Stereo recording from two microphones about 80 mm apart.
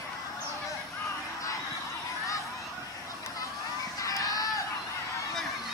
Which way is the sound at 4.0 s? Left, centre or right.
Left.